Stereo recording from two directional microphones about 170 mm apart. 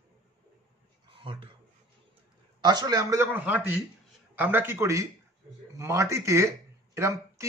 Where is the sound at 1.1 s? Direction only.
30° right (ahead or behind).